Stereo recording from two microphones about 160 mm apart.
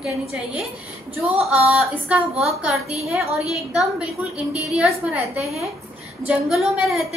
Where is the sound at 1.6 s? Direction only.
5° right (ahead or behind).